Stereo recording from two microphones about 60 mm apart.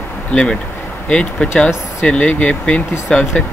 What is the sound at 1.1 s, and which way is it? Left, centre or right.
Speech, centre.